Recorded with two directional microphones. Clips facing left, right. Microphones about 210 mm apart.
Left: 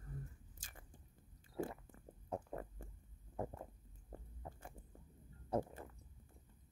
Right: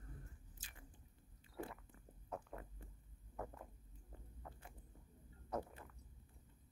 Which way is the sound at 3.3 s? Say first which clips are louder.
Left 5 dB; 30° left (ahead or behind).